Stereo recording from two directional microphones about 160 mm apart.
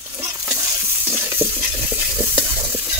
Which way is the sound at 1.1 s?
15° right (ahead or behind).